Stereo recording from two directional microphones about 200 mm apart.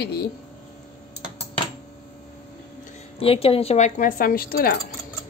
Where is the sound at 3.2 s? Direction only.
30° left (ahead or behind); by 4.7 s 50° left (ahead or behind).